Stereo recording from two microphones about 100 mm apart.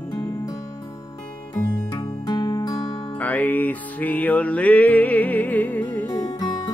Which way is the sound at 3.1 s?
15° left (ahead or behind).